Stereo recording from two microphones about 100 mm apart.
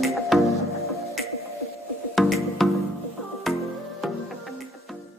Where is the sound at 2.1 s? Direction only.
Centre (ahead or behind).